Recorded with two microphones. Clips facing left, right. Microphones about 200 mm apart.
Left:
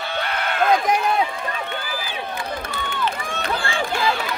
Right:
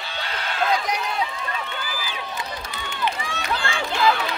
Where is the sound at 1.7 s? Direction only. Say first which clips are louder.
Left 3 dB; 55° left (ahead or behind).